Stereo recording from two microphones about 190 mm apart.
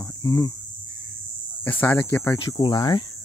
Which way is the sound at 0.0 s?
15° left (ahead or behind).